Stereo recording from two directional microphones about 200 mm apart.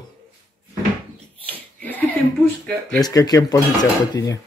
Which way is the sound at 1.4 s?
10° left (ahead or behind).